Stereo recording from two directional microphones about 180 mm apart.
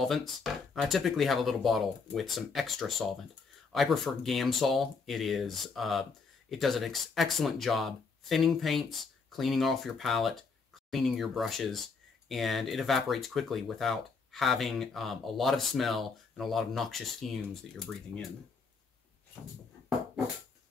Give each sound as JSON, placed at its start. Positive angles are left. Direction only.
{"t": 0.0, "sound": "speech", "side_deg": 0}